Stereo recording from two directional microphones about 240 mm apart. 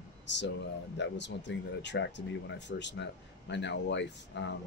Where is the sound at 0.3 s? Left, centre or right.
Left.